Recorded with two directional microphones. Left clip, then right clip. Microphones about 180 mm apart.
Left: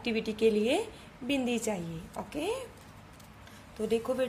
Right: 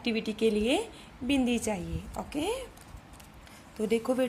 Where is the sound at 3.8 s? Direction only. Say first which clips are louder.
Right 2 dB; 20° right (ahead or behind).